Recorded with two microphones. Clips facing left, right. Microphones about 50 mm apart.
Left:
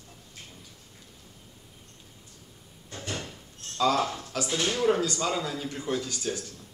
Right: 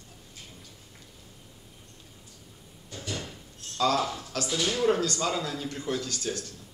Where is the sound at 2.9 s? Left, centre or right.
Left.